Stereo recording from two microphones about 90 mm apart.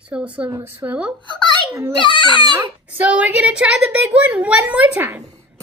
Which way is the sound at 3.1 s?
15° right (ahead or behind).